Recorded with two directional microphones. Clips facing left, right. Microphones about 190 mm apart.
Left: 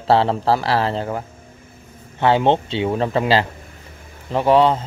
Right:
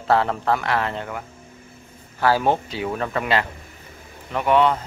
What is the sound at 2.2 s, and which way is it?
A man's voice, 25° left (ahead or behind).